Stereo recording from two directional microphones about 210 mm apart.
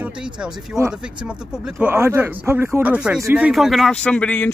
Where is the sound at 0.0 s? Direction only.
5° right (ahead or behind).